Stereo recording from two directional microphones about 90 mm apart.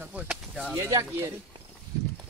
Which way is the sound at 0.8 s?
40° right (ahead or behind).